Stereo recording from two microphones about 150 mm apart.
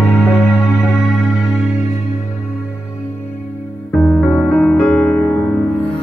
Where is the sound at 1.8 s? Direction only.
55° left (ahead or behind).